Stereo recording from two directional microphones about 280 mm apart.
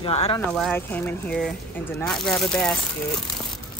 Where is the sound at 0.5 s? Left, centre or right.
Centre.